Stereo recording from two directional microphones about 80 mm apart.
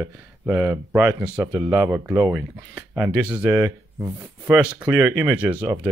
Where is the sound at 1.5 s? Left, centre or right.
Right.